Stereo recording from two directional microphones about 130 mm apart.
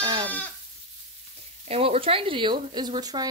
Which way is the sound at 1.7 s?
50° right (ahead or behind).